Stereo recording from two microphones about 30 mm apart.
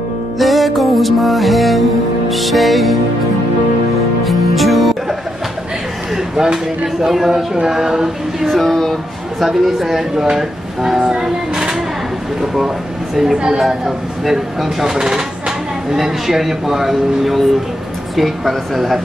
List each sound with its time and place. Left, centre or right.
0.4 s music: centre
4.2 s music: centre
6.1 s speech: centre
8.5 s speech: centre
9.4 s speech: centre
11.0 s female singing: right
12.4 s speech: centre
18.1 s music: centre